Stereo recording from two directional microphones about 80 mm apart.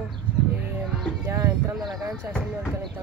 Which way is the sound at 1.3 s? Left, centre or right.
Right.